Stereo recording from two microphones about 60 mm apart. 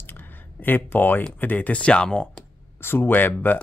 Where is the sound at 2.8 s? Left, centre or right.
Left.